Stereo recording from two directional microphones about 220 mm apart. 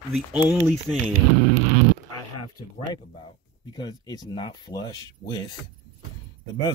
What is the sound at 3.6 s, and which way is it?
Speech, 20° left (ahead or behind).